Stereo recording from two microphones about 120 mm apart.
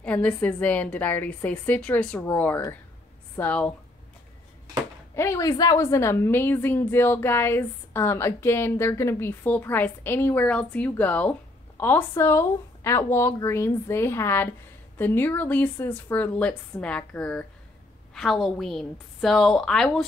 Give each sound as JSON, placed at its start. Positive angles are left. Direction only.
{"t": 0.0, "sound": "a woman's voice", "side_deg": 10}
{"t": 5.1, "sound": "a woman's voice", "side_deg": 25}
{"t": 18.1, "sound": "a woman's voice", "side_deg": 0}